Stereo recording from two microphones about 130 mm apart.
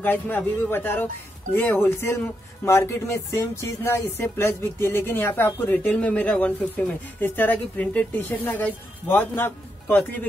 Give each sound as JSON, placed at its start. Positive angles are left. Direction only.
{"t": 0.0, "sound": "speech", "side_deg": 15}